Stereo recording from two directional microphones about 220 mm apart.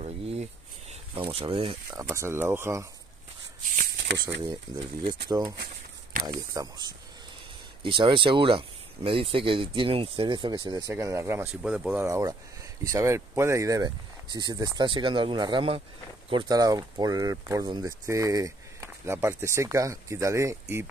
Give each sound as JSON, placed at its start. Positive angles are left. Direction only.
{"t": 0.0, "sound": "a sound", "side_deg": -30}
{"t": 1.9, "sound": "speech", "side_deg": -15}
{"t": 4.4, "sound": "speech", "side_deg": -20}
{"t": 6.2, "sound": "speech", "side_deg": -15}